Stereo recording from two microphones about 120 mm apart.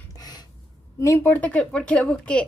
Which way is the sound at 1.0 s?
20° left (ahead or behind).